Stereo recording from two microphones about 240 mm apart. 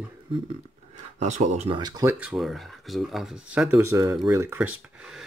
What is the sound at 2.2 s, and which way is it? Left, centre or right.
Speech, centre.